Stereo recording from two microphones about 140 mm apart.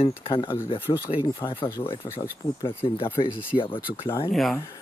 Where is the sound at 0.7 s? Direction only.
15° left (ahead or behind).